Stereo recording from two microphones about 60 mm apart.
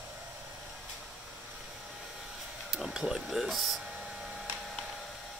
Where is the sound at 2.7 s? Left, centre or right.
Centre.